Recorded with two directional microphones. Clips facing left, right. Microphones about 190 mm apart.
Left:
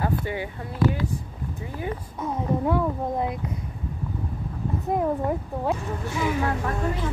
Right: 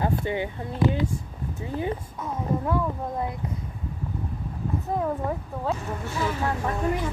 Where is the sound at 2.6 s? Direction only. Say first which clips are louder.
Left 3 dB; 20° left (ahead or behind).